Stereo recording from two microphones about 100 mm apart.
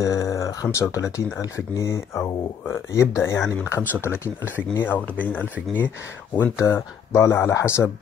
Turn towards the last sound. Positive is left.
turn(degrees=25)  # may be behind; listen again after turning